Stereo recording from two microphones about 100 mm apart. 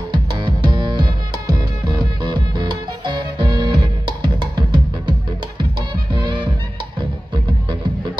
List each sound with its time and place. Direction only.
0.1 s music: 50° right (ahead or behind)